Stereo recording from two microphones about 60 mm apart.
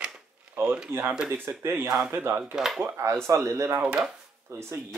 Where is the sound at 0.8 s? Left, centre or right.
Right.